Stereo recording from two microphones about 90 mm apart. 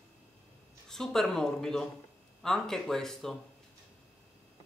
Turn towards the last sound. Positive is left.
turn(degrees=5)  # may be behind; listen again after turning